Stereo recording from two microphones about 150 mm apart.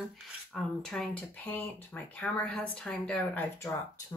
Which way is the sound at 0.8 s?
5° left (ahead or behind).